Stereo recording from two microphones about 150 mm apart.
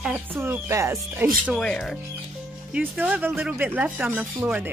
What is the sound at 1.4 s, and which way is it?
Speech, centre (ahead or behind).